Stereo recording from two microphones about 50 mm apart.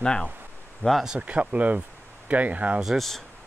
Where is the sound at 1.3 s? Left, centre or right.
Right.